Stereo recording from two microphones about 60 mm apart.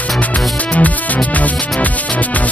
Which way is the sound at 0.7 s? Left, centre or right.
Left.